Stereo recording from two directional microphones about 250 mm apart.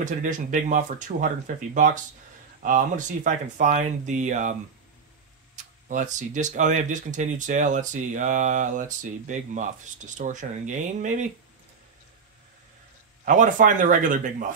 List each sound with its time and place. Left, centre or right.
0.0 s speech: right
5.9 s speech: right
13.2 s speech: right